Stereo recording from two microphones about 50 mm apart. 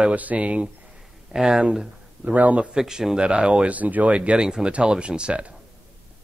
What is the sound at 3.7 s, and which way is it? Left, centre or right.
Speech, right.